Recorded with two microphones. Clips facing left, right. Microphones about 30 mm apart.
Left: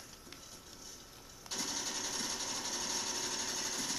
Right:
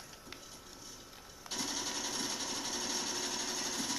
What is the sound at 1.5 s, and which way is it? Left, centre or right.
Sewing machine, centre.